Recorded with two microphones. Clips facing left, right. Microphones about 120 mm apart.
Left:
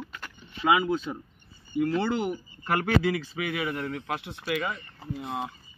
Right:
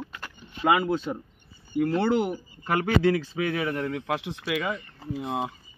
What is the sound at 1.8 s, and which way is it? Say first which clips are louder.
Speech: right 4 dB; 15° right (ahead or behind).